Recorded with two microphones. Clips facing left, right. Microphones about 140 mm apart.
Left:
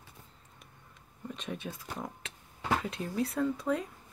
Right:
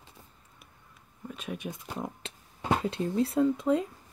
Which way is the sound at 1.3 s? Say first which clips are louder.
Right 2 dB; 5° right (ahead or behind).